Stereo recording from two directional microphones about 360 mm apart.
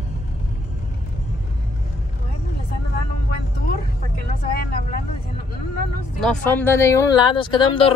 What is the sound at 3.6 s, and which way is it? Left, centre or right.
Vehicle, left.